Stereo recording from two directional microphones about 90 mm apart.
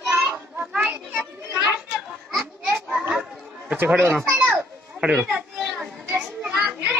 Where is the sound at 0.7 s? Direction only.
15° right (ahead or behind).